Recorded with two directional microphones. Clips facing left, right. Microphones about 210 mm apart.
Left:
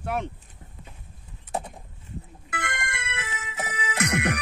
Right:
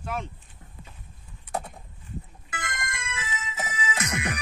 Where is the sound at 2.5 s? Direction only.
65° left (ahead or behind).